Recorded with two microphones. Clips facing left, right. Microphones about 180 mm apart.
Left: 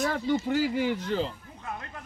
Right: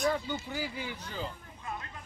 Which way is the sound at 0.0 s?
80° left.